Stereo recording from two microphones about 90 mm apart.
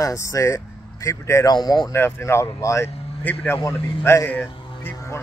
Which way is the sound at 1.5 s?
50° left (ahead or behind).